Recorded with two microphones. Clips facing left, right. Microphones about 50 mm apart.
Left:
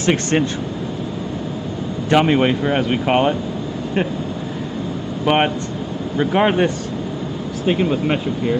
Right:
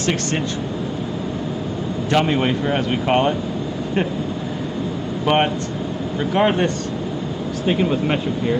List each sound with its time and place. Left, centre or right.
0.0 s speech: left
2.0 s speech: centre
5.2 s speech: centre